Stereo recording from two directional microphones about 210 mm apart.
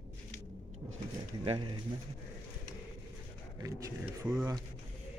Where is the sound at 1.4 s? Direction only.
25° right (ahead or behind).